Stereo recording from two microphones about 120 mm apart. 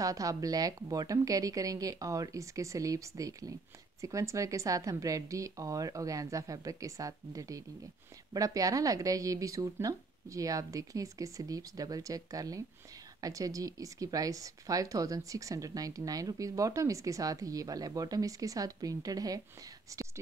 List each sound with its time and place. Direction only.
0.0 s speech: 30° right (ahead or behind)